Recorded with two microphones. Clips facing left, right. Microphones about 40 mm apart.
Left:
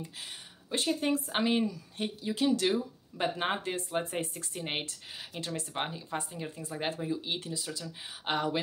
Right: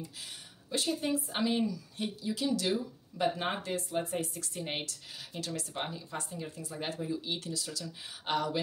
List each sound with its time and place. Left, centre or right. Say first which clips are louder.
0.0 s speech: left 2 dB; left
4.6 s speech: left 2 dB; left